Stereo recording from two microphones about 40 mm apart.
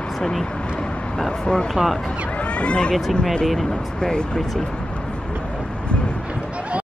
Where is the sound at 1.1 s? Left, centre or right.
Centre.